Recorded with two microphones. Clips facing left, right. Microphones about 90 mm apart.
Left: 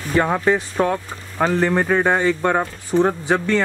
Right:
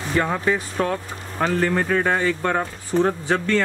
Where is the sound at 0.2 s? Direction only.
30° left (ahead or behind).